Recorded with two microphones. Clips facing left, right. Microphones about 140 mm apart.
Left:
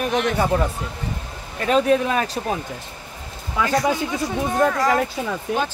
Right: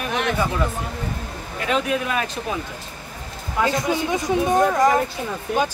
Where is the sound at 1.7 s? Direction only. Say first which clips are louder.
Left 5 dB; 35° left (ahead or behind).